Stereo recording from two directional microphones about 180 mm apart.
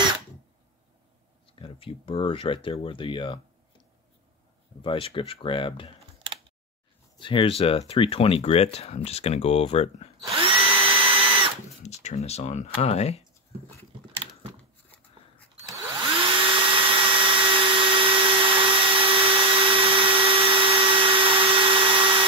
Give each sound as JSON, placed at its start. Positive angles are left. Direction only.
{"t": 1.5, "sound": "speech", "side_deg": 30}
{"t": 4.8, "sound": "speech", "side_deg": 30}
{"t": 7.2, "sound": "speech", "side_deg": 30}
{"t": 10.2, "sound": "drill", "side_deg": -30}
{"t": 11.8, "sound": "speech", "side_deg": 40}
{"t": 14.6, "sound": "a sound", "side_deg": 10}
{"t": 16.1, "sound": "drill", "side_deg": -30}